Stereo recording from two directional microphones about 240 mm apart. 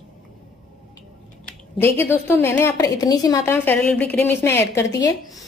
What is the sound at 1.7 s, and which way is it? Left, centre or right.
A woman's voice, centre.